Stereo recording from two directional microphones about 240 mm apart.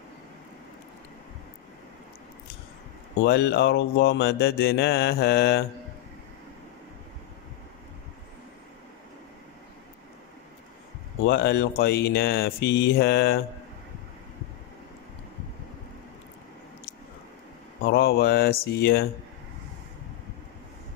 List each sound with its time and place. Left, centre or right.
3.2 s mantra: left
11.2 s speech: left
17.8 s speech: left